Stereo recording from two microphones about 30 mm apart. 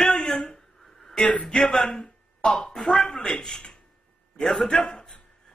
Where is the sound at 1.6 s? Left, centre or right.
Centre.